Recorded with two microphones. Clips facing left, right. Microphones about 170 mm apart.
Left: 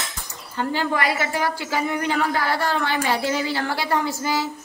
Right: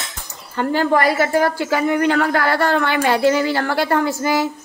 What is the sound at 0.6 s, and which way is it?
A woman's voice, 50° right (ahead or behind).